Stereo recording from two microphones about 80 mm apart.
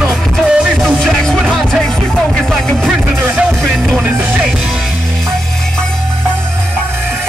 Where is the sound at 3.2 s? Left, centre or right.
Right.